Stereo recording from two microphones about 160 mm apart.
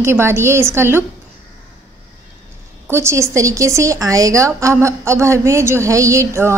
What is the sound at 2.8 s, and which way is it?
A woman's voice, 15° right (ahead or behind).